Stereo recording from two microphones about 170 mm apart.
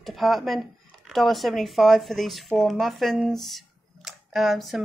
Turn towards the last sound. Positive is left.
turn(degrees=0)  # may be behind; listen again after turning